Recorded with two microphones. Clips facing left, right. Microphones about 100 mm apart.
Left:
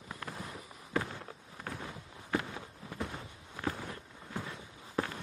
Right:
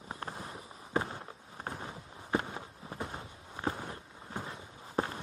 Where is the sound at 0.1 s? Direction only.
30° right (ahead or behind).